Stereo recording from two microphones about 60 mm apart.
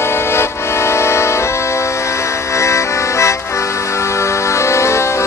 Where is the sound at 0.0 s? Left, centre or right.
Left.